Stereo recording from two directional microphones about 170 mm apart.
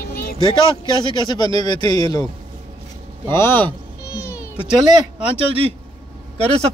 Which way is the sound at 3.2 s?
15° left (ahead or behind).